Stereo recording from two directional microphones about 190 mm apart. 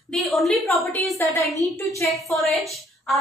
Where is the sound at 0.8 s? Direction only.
15° left (ahead or behind).